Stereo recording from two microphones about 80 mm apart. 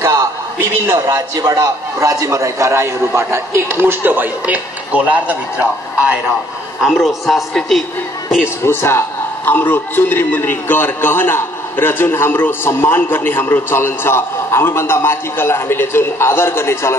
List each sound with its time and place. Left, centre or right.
0.0 s a sound: right
0.9 s a man's voice: right; by 6.0 s centre
6.8 s a man's voice: centre
8.6 s a man's voice: left